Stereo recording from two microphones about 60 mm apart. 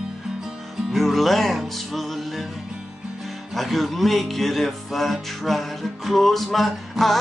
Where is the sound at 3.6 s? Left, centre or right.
Centre.